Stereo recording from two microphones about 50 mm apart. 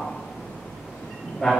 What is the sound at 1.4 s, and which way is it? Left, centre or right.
Speech, centre.